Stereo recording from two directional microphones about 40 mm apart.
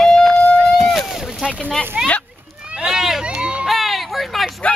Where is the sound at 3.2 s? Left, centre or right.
Right.